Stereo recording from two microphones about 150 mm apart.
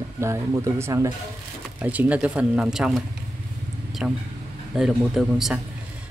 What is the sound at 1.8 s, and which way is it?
Speech, 10° right (ahead or behind).